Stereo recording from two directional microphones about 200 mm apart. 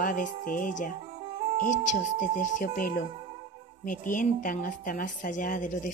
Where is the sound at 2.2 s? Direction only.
45° left (ahead or behind).